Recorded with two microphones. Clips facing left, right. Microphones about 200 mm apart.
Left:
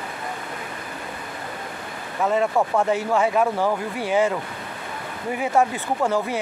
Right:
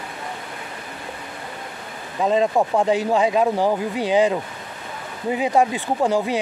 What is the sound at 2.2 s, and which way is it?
Speech, 20° right (ahead or behind).